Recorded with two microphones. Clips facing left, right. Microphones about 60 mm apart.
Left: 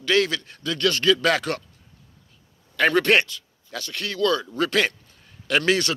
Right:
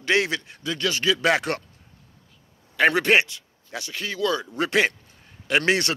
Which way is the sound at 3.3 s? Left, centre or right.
Right.